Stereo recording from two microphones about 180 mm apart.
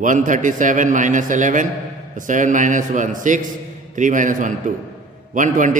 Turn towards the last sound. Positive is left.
turn(degrees=-45)  # may be behind; listen again after turning